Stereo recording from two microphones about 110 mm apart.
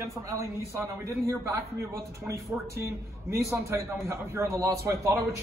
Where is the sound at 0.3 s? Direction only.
25° right (ahead or behind).